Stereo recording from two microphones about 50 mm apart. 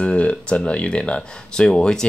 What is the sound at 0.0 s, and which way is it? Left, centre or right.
Speech, left.